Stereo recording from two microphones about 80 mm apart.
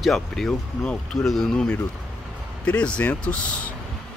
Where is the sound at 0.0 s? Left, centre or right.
Centre.